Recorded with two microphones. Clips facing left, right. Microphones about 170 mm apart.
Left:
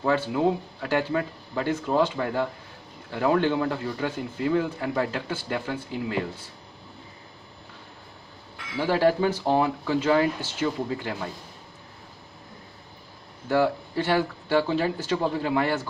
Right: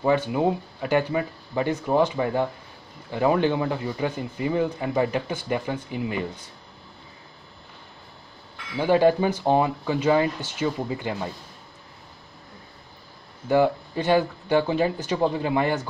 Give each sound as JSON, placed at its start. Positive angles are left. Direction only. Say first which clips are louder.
{"t": 0.0, "sound": "speech", "louder": "right 1 dB", "side_deg": -15}
{"t": 8.7, "sound": "speech", "louder": "right 3 dB", "side_deg": -20}
{"t": 13.5, "sound": "speech", "louder": "right 3 dB", "side_deg": -15}